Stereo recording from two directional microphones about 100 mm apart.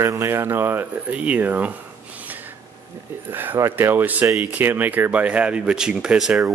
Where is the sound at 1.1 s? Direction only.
15° right (ahead or behind).